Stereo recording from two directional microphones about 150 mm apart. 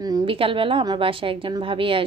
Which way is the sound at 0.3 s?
35° right (ahead or behind).